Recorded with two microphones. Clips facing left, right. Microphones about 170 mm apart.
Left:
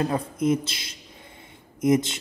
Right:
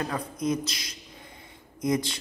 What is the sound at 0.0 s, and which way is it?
A man's voice, 25° left (ahead or behind).